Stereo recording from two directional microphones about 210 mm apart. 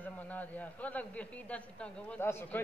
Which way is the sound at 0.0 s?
10° left (ahead or behind).